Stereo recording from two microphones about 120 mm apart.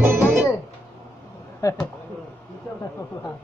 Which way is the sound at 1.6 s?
30° left (ahead or behind).